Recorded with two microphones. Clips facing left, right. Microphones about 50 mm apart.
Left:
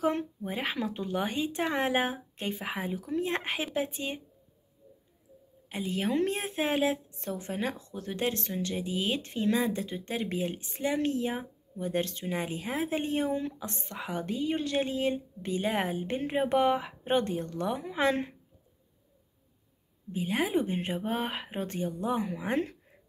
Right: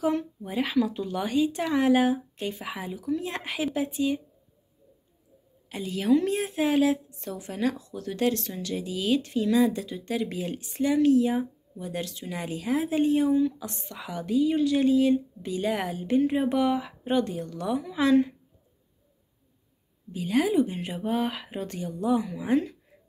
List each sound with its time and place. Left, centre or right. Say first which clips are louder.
0.0 s speech: right 2 dB; left
5.7 s speech: right 6 dB; left
11.0 s speech: right 9 dB; left
20.1 s speech: right 5 dB; left